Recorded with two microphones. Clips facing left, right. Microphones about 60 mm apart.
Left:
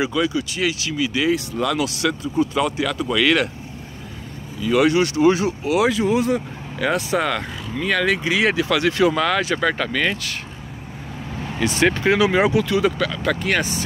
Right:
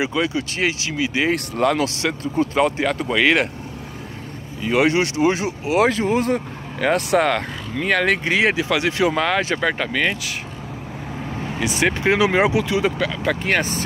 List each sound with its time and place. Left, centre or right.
0.0 s speech: right
1.3 s speech: right
1.7 s speech: right
4.6 s speech: right
5.9 s speech: right
7.0 s speech: right
8.4 s speech: right
11.6 s speech: centre; by 13.8 s right